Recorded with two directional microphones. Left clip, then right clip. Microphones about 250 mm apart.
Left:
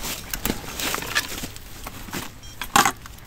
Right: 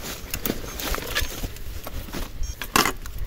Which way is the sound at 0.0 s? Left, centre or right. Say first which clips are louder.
Left 2 dB; left.